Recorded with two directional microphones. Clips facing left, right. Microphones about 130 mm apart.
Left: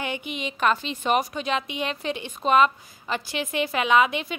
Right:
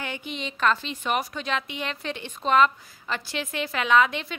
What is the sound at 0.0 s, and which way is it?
A woman's voice, 15° left (ahead or behind).